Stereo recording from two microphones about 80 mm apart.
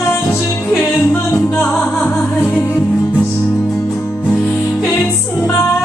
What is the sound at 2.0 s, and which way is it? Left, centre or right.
Music, left.